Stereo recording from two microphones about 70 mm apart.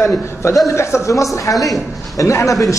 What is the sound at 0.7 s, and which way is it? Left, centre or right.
A man's voice, left.